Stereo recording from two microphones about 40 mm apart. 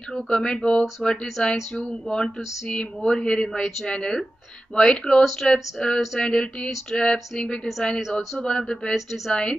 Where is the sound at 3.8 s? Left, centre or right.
Left.